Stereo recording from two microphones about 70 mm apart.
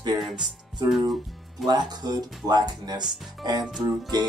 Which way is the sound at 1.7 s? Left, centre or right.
Right.